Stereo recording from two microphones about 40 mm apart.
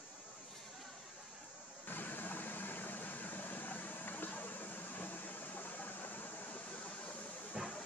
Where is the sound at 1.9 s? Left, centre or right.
Left.